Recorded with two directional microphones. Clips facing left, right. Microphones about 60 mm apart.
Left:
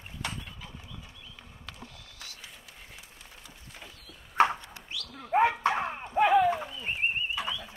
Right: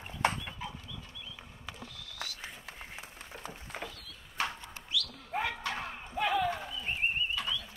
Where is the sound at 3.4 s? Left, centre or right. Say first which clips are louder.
Right 9 dB; right.